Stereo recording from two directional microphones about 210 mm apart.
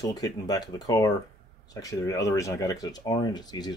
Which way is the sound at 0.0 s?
15° left (ahead or behind).